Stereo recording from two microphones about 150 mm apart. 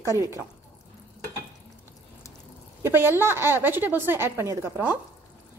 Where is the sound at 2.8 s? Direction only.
15° right (ahead or behind).